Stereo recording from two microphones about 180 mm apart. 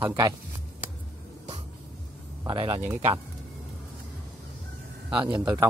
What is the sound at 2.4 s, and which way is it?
Speech, 25° right (ahead or behind).